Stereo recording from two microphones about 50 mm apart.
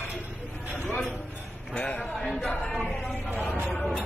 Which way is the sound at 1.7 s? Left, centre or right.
Left.